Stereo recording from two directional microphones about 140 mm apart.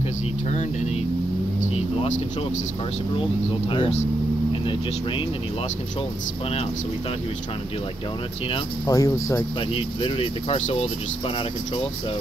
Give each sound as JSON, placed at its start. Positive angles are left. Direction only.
{"t": 0.5, "sound": "speech", "side_deg": 55}
{"t": 3.6, "sound": "speech", "side_deg": 35}
{"t": 8.8, "sound": "speech", "side_deg": 25}
{"t": 9.6, "sound": "speech", "side_deg": 40}